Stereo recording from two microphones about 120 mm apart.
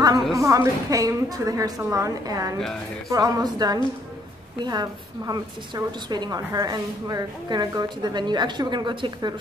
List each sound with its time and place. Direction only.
0.3 s a woman's voice: 25° right (ahead or behind)